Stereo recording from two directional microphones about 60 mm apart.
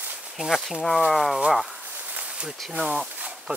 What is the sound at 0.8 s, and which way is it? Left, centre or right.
Speech, centre.